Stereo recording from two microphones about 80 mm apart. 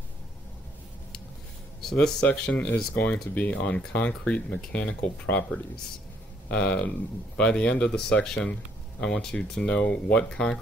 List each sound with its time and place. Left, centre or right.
1.8 s speech: centre
6.5 s speech: centre